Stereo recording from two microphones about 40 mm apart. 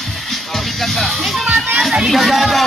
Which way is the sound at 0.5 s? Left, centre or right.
Centre.